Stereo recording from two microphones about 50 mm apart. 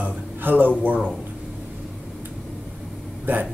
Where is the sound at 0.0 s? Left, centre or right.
Right.